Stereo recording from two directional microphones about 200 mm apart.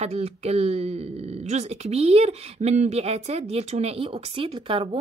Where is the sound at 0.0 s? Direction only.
30° right (ahead or behind).